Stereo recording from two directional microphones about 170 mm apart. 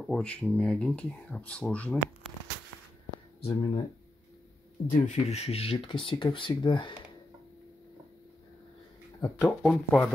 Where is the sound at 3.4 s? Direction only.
35° left (ahead or behind).